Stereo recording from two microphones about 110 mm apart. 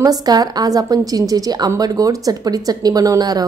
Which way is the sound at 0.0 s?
35° right (ahead or behind).